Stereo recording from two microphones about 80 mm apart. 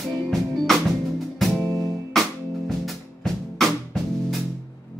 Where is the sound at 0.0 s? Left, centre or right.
Centre.